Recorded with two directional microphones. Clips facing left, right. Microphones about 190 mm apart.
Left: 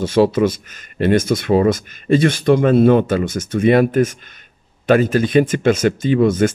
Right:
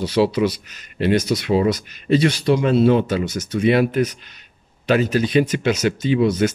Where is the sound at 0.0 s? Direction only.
50° left (ahead or behind).